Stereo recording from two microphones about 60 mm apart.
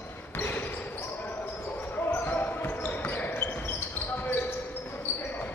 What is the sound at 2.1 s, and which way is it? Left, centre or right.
Basketball bounce, left.